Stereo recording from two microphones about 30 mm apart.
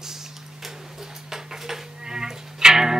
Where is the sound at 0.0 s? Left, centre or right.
Centre.